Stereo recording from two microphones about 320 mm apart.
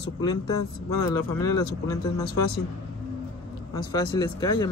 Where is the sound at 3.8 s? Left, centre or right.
Centre.